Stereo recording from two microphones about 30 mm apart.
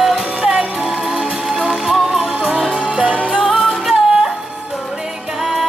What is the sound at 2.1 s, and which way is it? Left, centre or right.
Music, centre.